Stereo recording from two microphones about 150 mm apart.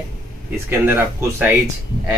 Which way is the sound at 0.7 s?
15° right (ahead or behind).